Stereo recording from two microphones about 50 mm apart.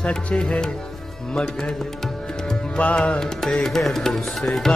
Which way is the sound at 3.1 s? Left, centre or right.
Centre.